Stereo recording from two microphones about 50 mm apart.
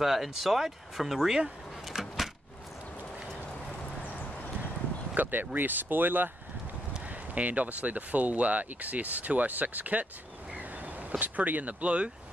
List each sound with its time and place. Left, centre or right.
0.0 s speech: centre
1.9 s door: centre
5.1 s speech: right
7.1 s speech: right
10.5 s a sound: right